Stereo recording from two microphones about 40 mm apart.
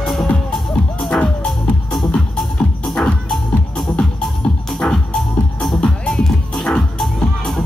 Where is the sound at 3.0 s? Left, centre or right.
Centre.